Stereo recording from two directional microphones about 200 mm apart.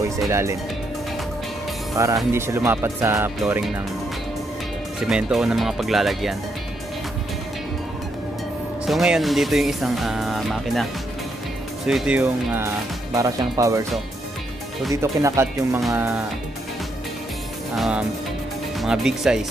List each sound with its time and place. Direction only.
0.3 s speech: 15° right (ahead or behind)
2.0 s speech: 15° right (ahead or behind)
5.0 s speech: centre (ahead or behind)
8.8 s speech: centre (ahead or behind)
13.1 s speech: 15° right (ahead or behind)
14.9 s speech: 15° right (ahead or behind)
17.7 s speech: 5° right (ahead or behind)